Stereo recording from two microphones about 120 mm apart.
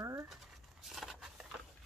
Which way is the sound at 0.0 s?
25° right (ahead or behind).